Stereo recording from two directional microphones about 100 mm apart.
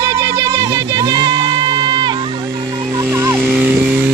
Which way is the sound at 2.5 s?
35° right (ahead or behind).